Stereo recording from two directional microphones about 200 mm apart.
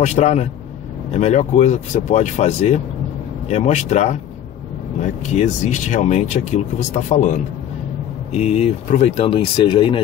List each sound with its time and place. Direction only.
0.0 s speech: 35° left (ahead or behind)